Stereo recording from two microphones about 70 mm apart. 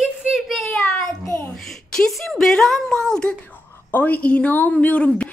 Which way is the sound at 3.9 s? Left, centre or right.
Left.